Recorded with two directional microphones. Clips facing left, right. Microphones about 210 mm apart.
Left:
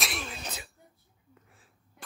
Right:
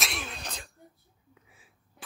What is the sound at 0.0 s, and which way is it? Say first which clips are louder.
Throat clearing: left 1 dB; centre (ahead or behind).